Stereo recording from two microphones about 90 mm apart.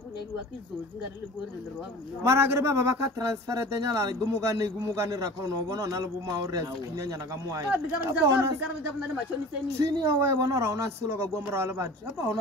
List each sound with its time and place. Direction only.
2.2 s speech: 30° right (ahead or behind)
7.7 s speech: 20° right (ahead or behind)
10.0 s speech: 35° right (ahead or behind)